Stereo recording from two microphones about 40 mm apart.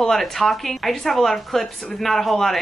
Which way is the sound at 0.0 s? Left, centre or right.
Centre.